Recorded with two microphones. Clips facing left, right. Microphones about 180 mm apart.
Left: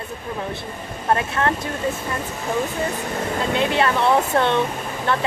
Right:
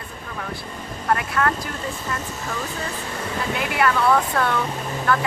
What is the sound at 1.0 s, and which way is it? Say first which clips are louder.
Speech: left 1 dB; 25° left (ahead or behind).